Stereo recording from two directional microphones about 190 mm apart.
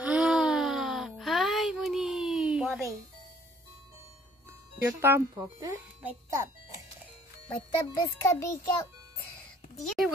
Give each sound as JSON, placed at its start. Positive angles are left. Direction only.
{"t": 0.0, "sound": "a sound", "side_deg": -5}
{"t": 4.8, "sound": "speech", "side_deg": -10}
{"t": 7.4, "sound": "a child's voice", "side_deg": 15}
{"t": 9.8, "sound": "speech", "side_deg": 0}